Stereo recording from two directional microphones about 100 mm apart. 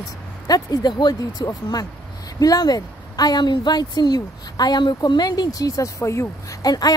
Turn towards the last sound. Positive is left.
turn(degrees=40)  # may be behind; listen again after turning